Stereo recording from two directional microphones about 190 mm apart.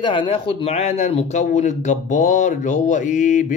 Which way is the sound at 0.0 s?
25° left (ahead or behind).